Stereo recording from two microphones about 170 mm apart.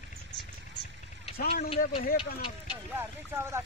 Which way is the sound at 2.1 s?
30° left (ahead or behind).